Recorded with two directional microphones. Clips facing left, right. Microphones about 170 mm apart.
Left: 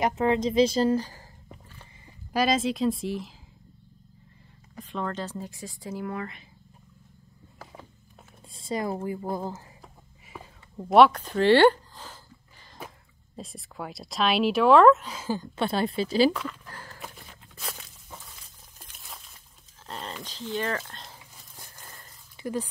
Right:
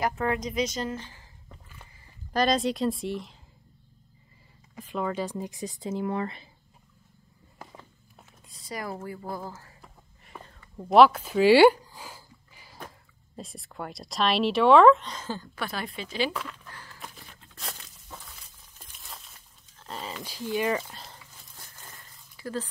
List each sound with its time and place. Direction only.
0.0 s a woman's voice: 20° left (ahead or behind); by 1.2 s 35° left (ahead or behind)
2.3 s speech: 5° left (ahead or behind)
4.7 s speech: 10° right (ahead or behind); by 6.4 s 30° right (ahead or behind)
8.5 s speech: 25° left (ahead or behind)
10.2 s a sound: 5° left (ahead or behind)
13.4 s speech: centre (ahead or behind); by 16.3 s 35° left (ahead or behind)
16.7 s a sound: 45° left (ahead or behind)
18.9 s a sound: centre (ahead or behind)
22.4 s speech: 15° left (ahead or behind)